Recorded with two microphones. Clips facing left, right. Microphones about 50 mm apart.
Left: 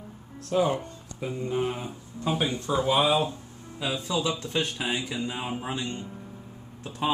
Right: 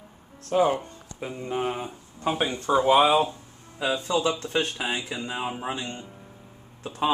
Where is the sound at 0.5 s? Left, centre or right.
Centre.